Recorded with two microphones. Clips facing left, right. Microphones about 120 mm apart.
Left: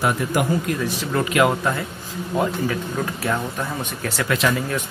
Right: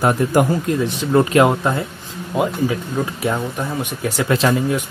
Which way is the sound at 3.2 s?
15° right (ahead or behind).